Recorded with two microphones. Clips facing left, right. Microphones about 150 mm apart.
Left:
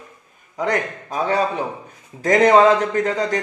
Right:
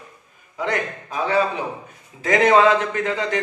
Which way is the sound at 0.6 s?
40° left (ahead or behind).